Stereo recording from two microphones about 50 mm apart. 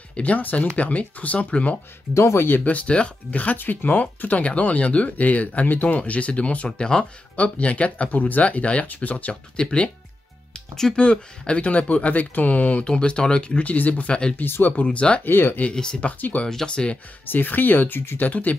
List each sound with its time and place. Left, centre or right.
0.1 s speech: left
2.1 s speech: left
2.6 s speech: left
9.6 s speech: centre
11.0 s speech: left
14.4 s speech: left
14.7 s speech: left
15.2 s speech: left
15.7 s speech: centre
16.0 s speech: left
16.6 s speech: left
17.3 s speech: left
18.3 s speech: left